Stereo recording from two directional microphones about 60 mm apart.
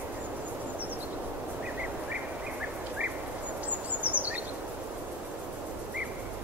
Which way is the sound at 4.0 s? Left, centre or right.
Right.